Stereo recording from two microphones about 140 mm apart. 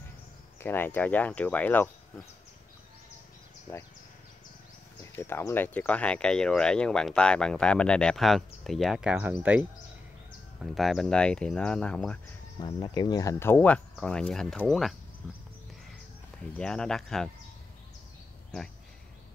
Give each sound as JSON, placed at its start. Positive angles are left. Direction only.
{"t": 0.6, "sound": "speech", "side_deg": 15}
{"t": 5.0, "sound": "speech", "side_deg": 15}
{"t": 10.6, "sound": "speech", "side_deg": 0}
{"t": 12.8, "sound": "speech", "side_deg": 30}
{"t": 16.5, "sound": "speech", "side_deg": 5}